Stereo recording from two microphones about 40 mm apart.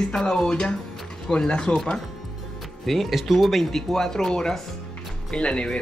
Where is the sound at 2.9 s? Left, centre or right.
Centre.